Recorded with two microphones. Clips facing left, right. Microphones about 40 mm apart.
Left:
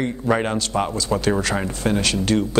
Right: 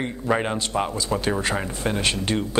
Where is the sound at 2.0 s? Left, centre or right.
Right.